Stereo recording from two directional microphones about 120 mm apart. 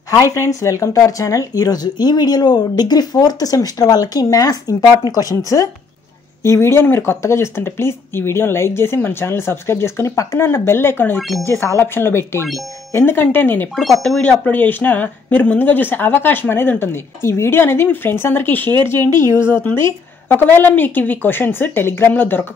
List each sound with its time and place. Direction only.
0.1 s speech: 25° left (ahead or behind)
11.1 s speech: centre (ahead or behind)
11.4 s speech: 20° left (ahead or behind)